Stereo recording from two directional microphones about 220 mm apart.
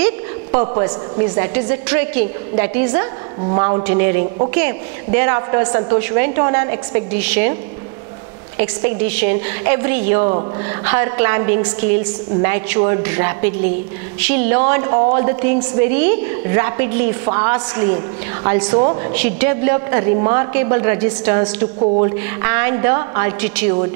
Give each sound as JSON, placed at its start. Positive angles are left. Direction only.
{"t": 0.5, "sound": "a woman's voice", "side_deg": -25}
{"t": 9.0, "sound": "a woman's voice", "side_deg": -10}
{"t": 19.1, "sound": "a woman's voice", "side_deg": -10}
{"t": 21.7, "sound": "speech", "side_deg": -30}
{"t": 22.4, "sound": "a woman's voice", "side_deg": -15}